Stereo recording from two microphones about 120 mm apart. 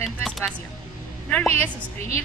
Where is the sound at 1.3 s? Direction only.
15° left (ahead or behind).